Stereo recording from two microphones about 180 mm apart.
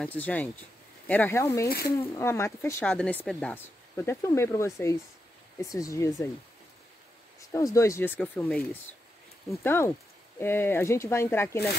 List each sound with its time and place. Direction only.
0.0 s speech: 10° left (ahead or behind)
7.3 s speech: 15° left (ahead or behind)